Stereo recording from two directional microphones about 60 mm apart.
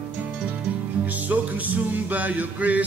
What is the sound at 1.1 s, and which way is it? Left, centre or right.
Music, right.